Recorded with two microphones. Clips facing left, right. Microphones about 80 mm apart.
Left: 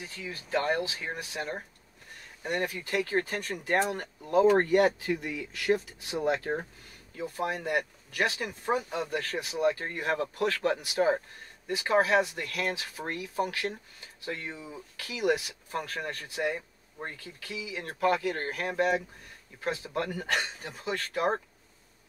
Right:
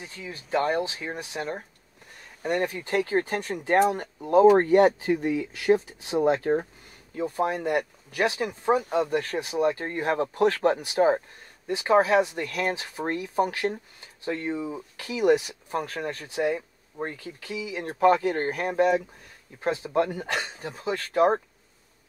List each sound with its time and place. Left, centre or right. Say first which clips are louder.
0.0 s speech: right 1 dB; right
2.4 s speech: right 5 dB; right
8.7 s speech: right 6 dB; right